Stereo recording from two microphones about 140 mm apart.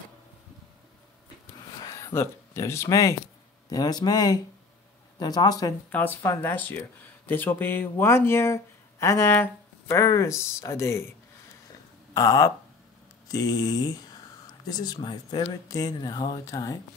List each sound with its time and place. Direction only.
1.8 s speech: 25° left (ahead or behind)
5.9 s speech: 15° left (ahead or behind)
12.1 s speech: 25° left (ahead or behind)